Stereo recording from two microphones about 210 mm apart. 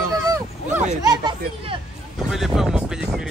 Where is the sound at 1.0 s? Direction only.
20° right (ahead or behind).